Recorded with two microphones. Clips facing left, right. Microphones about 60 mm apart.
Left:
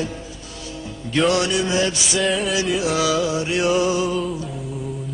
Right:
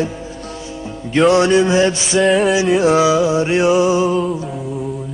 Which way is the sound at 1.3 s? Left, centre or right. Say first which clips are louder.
Right 10 dB; right.